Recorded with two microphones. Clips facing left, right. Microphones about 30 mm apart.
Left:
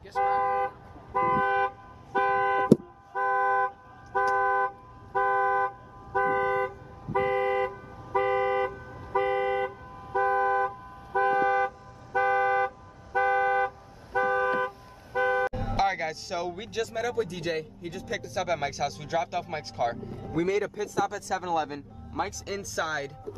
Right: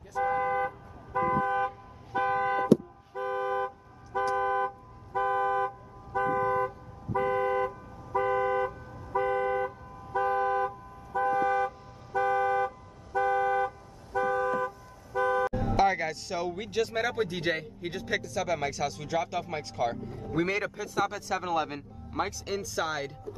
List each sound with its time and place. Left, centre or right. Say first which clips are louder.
0.4 s vehicle: left 2 dB; left
1.2 s toot: left 3 dB; left
2.1 s car: left 3 dB; centre
6.2 s car: left 1 dB; left
10.3 s car: left 2 dB; centre
11.3 s toot: left 2 dB; left
15.1 s music: left 1 dB; left
15.8 s speech: right 1 dB; centre
16.9 s a man's voice: even; right
18.2 s speech: left 1 dB; centre
20.3 s a man's voice: left 2 dB; right; by 23.1 s centre